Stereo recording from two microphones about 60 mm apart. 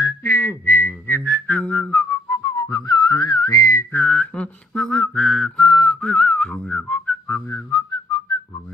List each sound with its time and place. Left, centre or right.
0.2 s music: left
1.6 s whistling: left
2.0 s whistling: left
2.4 s whistling: left
3.9 s whistling: left; by 5.7 s centre
5.7 s whistling: centre
7.2 s whistling: left